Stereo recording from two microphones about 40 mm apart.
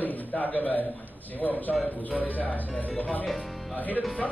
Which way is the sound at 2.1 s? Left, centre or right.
Left.